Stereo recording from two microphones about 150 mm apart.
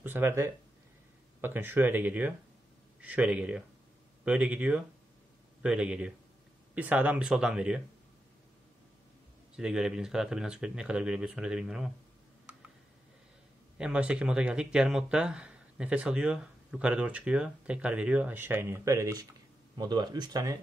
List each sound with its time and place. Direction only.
0.0 s speech: 15° right (ahead or behind)
9.6 s speech: 5° right (ahead or behind)
13.7 s speech: 5° right (ahead or behind); by 20.5 s 25° right (ahead or behind)